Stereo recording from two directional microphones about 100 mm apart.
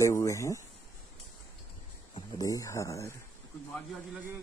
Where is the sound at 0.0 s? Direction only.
30° left (ahead or behind).